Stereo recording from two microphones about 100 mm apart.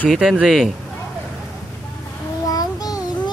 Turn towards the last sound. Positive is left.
turn(degrees=40)  # may be behind; listen again after turning